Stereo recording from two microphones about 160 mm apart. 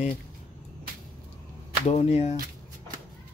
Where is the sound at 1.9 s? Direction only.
40° left (ahead or behind).